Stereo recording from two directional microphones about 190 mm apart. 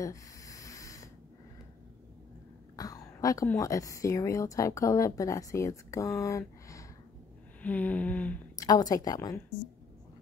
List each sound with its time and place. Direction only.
0.0 s a sound: 15° left (ahead or behind)
2.7 s speech: 20° left (ahead or behind)
8.5 s a woman's voice: 20° left (ahead or behind)